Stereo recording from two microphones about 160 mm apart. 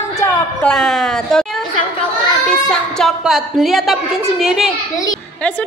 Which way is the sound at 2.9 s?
Centre (ahead or behind).